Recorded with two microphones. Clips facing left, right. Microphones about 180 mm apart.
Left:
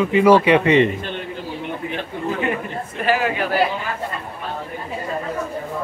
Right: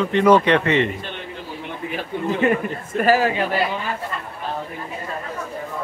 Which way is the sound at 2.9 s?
40° right (ahead or behind).